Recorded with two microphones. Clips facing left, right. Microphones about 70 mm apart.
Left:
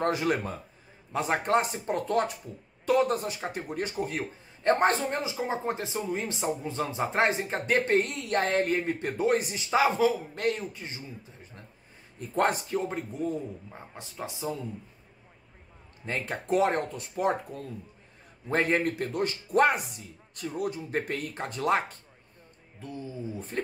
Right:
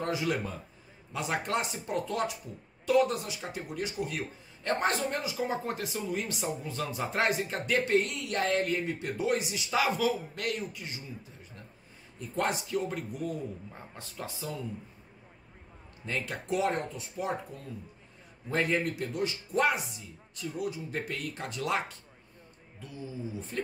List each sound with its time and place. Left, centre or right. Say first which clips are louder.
0.0 s a man's voice: left 4 dB; left
12.2 s a man's voice: left 5 dB; left
12.7 s speech: left 2 dB; left
16.1 s a man's voice: left 4 dB; left
18.5 s a man's voice: left 3 dB; left